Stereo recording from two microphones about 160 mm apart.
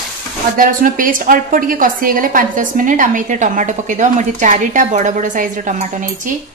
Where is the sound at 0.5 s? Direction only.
60° right (ahead or behind).